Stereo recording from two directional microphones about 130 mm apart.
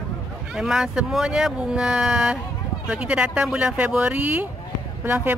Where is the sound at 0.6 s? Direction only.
5° right (ahead or behind).